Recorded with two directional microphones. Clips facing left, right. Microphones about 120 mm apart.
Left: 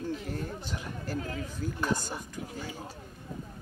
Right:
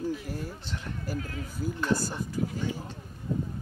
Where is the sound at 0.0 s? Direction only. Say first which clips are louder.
Right 2 dB; 5° right (ahead or behind).